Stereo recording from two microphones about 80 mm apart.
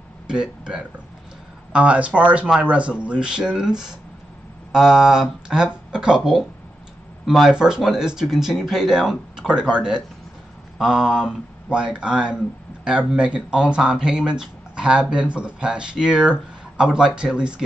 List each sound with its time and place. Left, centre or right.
0.3 s speech: centre